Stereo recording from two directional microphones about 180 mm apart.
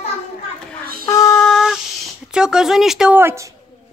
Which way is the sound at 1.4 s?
Centre (ahead or behind).